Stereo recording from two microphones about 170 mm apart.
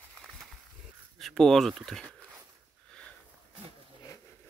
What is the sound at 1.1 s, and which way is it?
Speech, centre (ahead or behind).